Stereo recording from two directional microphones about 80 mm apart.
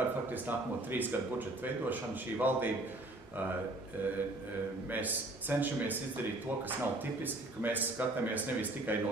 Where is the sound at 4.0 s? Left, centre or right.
Right.